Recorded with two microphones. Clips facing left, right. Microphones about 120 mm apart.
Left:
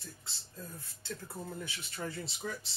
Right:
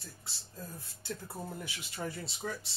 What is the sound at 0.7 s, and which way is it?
Speech, 15° right (ahead or behind).